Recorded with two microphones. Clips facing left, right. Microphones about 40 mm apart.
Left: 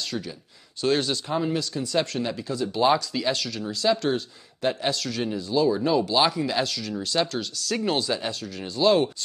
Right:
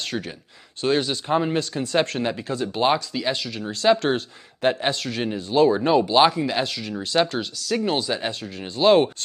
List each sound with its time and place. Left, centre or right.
0.8 s speech: centre
1.3 s speech: right
2.9 s speech: centre
3.8 s speech: right
6.0 s speech: right
7.5 s speech: centre
8.1 s speech: right